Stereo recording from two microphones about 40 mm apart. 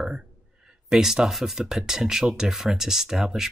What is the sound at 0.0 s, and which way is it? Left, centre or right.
Speech, centre.